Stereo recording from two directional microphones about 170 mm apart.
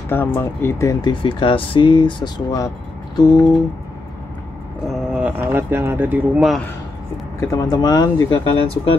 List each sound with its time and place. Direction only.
0.1 s speech: 10° left (ahead or behind)
1.2 s speech: 30° left (ahead or behind)
4.8 s speech: 5° right (ahead or behind)
7.3 s speech: 20° left (ahead or behind)